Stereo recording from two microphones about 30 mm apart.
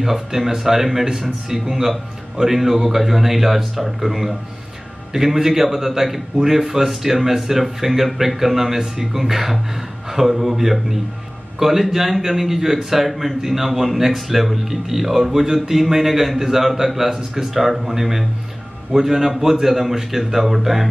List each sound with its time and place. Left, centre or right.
0.0 s a man's voice: centre